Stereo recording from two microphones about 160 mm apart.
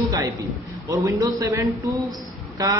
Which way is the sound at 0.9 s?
20° right (ahead or behind).